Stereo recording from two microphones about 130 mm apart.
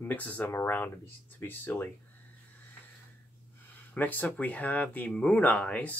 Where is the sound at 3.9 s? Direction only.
15° left (ahead or behind).